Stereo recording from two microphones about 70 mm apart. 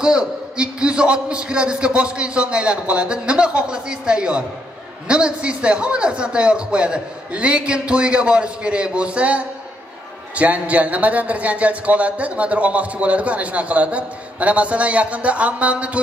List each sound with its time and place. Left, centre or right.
0.0 s a man's voice: centre